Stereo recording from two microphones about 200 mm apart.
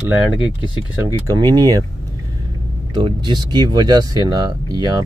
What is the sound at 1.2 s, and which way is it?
Speech, 20° right (ahead or behind).